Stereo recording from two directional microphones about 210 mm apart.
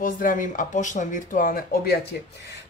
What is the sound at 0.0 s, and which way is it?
Speech, 40° left (ahead or behind).